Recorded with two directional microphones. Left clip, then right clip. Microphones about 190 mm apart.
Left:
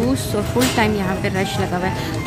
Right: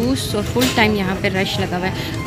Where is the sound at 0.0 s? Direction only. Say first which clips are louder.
Even; centre (ahead or behind).